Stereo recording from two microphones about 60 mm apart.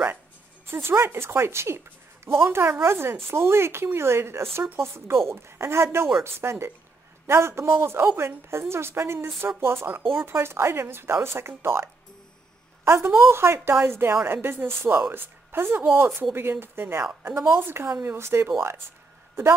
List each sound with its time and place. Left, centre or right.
0.7 s a woman's voice: right